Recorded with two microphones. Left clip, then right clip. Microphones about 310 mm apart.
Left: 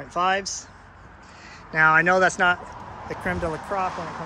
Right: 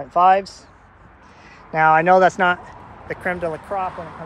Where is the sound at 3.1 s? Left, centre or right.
Centre.